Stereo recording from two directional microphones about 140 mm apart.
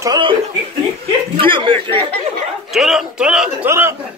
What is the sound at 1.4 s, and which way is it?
Speech, 35° right (ahead or behind).